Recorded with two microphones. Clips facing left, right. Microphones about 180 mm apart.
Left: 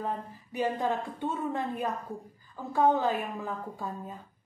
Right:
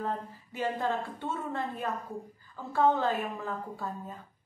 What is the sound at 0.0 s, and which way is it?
A woman's voice, 15° left (ahead or behind).